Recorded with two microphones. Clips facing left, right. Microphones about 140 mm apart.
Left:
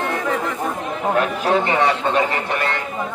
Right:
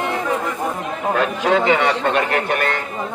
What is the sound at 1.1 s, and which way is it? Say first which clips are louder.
A man's voice: right 1 dB; 90° right.